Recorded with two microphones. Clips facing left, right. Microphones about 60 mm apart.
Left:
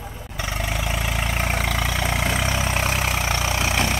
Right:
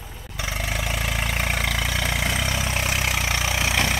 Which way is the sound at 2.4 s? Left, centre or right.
Left.